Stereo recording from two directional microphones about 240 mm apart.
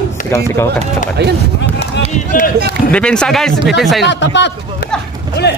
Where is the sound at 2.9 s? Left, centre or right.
Centre.